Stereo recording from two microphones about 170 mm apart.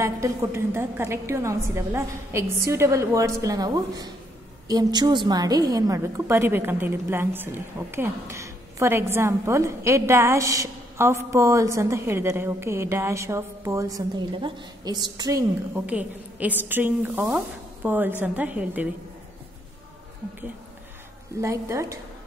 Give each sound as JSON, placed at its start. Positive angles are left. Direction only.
{"t": 0.0, "sound": "a woman's voice", "side_deg": -15}
{"t": 15.9, "sound": "a woman's voice", "side_deg": -10}
{"t": 21.4, "sound": "a woman's voice", "side_deg": -15}